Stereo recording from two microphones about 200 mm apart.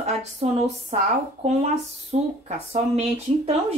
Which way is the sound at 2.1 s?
35° right (ahead or behind).